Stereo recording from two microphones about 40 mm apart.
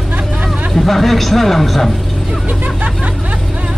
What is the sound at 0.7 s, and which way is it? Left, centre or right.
Speech, centre.